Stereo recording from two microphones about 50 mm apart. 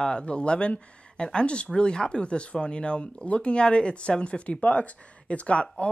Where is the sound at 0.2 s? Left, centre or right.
Left.